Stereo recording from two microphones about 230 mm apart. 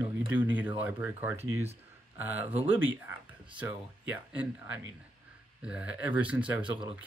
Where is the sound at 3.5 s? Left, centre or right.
Centre.